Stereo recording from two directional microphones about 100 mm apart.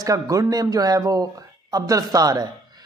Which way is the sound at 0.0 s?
35° right (ahead or behind).